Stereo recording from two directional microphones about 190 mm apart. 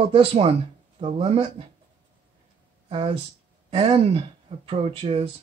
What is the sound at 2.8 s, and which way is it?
Speech, 30° right (ahead or behind).